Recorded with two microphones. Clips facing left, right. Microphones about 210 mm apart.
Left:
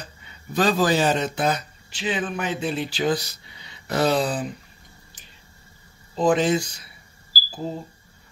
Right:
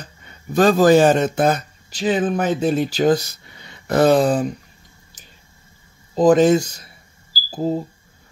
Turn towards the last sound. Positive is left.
turn(degrees=-35)  # may be behind; listen again after turning